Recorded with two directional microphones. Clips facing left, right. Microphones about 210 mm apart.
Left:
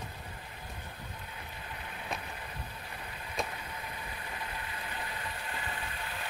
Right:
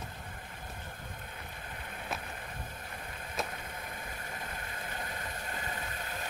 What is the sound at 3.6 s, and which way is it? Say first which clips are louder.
Vehicle: even; 50° right (ahead or behind).